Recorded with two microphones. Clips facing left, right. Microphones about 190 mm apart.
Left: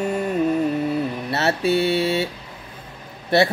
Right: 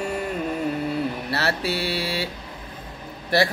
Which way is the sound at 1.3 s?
25° left (ahead or behind).